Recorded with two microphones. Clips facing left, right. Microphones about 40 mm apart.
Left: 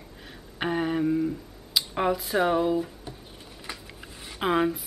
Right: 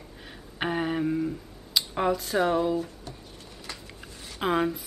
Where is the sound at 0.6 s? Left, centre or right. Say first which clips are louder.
Left 1 dB; centre.